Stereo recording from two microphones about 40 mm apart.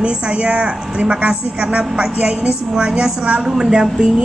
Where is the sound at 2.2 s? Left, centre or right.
Centre.